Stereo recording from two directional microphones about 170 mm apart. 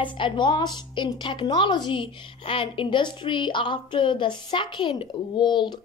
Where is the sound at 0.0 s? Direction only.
30° left (ahead or behind).